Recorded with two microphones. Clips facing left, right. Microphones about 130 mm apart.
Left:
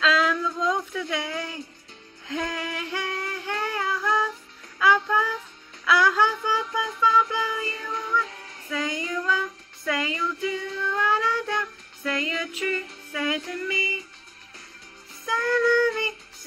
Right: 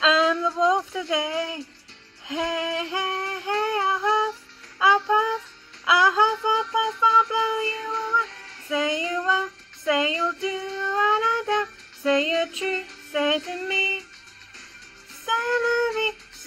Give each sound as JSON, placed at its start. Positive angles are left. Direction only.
{"t": 0.0, "sound": "a sound", "side_deg": -25}
{"t": 2.2, "sound": "female singing", "side_deg": -20}
{"t": 4.7, "sound": "music", "side_deg": -25}
{"t": 5.9, "sound": "a sound", "side_deg": -20}
{"t": 8.6, "sound": "female singing", "side_deg": -20}
{"t": 9.8, "sound": "child singing", "side_deg": -25}
{"t": 13.1, "sound": "music", "side_deg": -25}
{"t": 15.2, "sound": "female singing", "side_deg": -20}